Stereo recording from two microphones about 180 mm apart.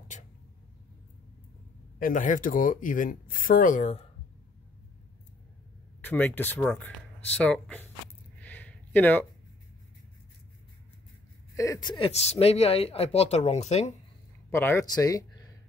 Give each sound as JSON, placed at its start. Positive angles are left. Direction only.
{"t": 2.0, "sound": "speech", "side_deg": 50}
{"t": 5.9, "sound": "speech", "side_deg": 10}
{"t": 8.4, "sound": "a sound", "side_deg": 10}
{"t": 11.5, "sound": "speech", "side_deg": 20}
{"t": 12.1, "sound": "speech", "side_deg": 35}
{"t": 14.5, "sound": "speech", "side_deg": 15}